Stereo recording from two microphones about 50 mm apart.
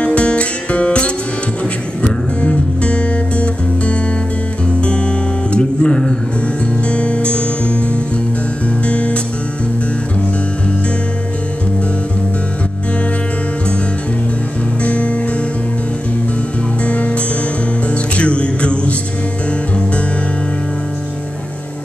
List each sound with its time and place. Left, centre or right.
0.0 s music: left
14.8 s music: left
16.8 s music: left